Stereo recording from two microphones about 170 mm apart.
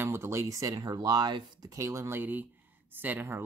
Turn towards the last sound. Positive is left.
turn(degrees=-15)  # may be behind; listen again after turning